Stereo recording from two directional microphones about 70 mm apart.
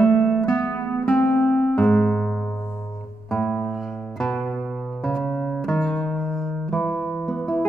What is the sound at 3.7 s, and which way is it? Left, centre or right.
Music, centre.